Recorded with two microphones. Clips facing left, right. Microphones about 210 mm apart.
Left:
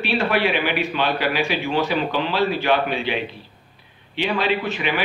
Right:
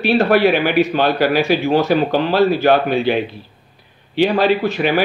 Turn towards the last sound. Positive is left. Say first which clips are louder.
# right 6 dB
turn(degrees=-40)  # may be behind; listen again after turning